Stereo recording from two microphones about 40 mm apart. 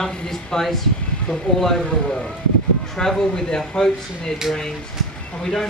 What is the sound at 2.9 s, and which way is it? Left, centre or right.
Speech, centre.